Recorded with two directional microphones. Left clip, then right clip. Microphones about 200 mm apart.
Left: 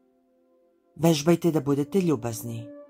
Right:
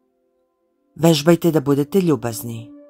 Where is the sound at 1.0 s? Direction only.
30° right (ahead or behind).